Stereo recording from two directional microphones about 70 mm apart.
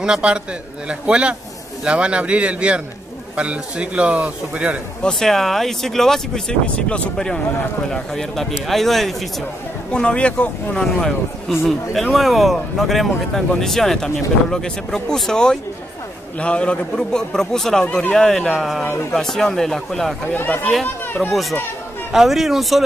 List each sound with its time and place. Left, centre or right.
0.0 s a man's voice: centre
5.0 s speech: centre
9.9 s a man's voice: centre
10.8 s a man's voice: centre
20.3 s speech: left
21.3 s speech: centre